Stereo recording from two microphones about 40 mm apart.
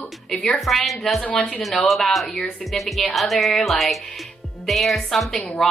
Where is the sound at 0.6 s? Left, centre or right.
Centre.